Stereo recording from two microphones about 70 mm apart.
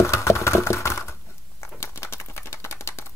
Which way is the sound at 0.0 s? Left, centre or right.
Left.